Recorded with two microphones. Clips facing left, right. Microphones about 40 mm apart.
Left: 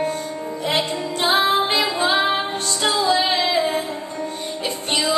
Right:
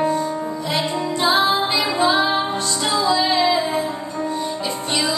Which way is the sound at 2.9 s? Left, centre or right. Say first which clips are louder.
Right 2 dB; left.